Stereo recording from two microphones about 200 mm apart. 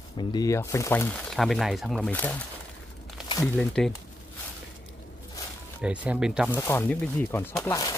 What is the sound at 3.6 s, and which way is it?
Speech, 5° left (ahead or behind).